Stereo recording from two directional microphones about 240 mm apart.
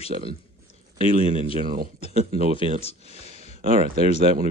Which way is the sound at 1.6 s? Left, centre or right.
Right.